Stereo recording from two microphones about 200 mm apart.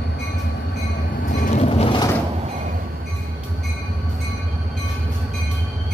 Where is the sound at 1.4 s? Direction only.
35° left (ahead or behind).